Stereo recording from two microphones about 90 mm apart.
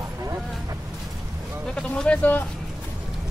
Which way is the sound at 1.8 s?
5° left (ahead or behind).